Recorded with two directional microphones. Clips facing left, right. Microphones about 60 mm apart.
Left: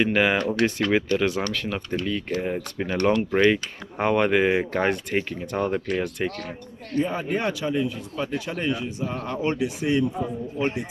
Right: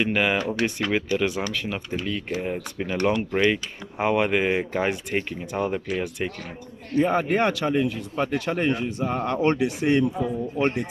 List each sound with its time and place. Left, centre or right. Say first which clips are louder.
0.0 s speech: left 2 dB; centre
7.1 s speech: right 4 dB; right
9.4 s speech: right 2 dB; right